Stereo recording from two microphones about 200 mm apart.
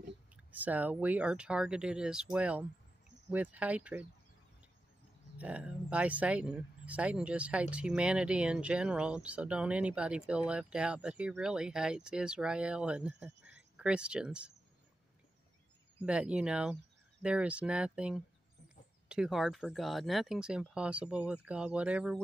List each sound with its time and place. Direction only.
0.5 s speech: 10° right (ahead or behind)
5.4 s speech: 5° right (ahead or behind)
16.1 s speech: 5° right (ahead or behind)